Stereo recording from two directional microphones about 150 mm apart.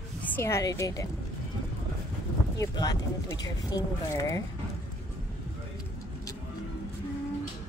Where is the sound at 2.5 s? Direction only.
25° left (ahead or behind).